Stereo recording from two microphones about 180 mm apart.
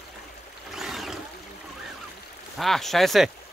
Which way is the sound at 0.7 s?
Centre (ahead or behind).